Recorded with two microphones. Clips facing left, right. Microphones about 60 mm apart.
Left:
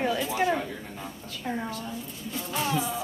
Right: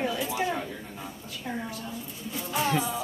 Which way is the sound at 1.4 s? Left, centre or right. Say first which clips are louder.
Left 3 dB; left.